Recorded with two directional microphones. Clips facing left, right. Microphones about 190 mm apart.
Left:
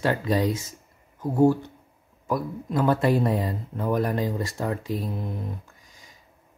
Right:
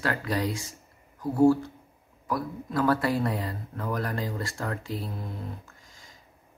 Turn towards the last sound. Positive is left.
turn(degrees=15)  # may be behind; listen again after turning